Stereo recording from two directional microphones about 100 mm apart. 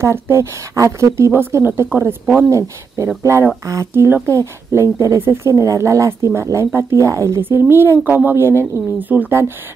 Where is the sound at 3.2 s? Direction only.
30° right (ahead or behind).